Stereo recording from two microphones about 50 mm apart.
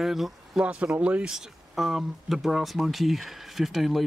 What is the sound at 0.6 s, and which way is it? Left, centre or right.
Speech, right.